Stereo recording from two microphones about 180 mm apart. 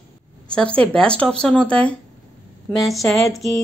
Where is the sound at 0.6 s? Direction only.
5° left (ahead or behind).